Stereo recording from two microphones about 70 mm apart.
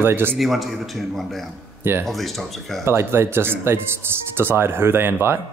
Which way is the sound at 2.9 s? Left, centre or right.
Right.